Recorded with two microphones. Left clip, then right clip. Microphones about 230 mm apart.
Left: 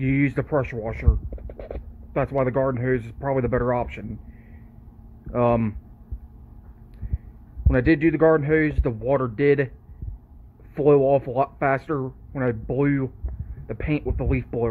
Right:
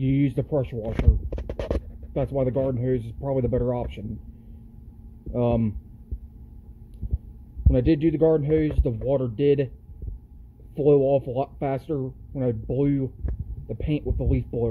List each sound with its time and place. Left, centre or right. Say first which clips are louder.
0.0 s speech: left 2 dB; left
2.1 s speech: left 2 dB; left
5.3 s speech: left 4 dB; left
7.6 s speech: left 2 dB; left
10.7 s speech: left 2 dB; left